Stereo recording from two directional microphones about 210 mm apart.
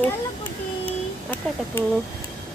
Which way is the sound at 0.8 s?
10° left (ahead or behind).